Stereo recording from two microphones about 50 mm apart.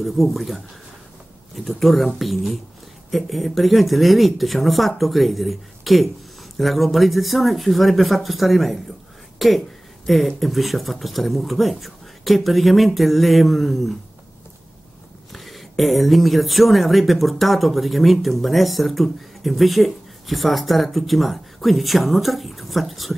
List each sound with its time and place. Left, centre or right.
0.0 s speech: centre
15.3 s speech: centre